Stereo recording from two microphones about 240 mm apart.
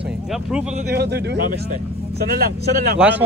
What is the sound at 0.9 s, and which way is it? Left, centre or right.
Speech, right.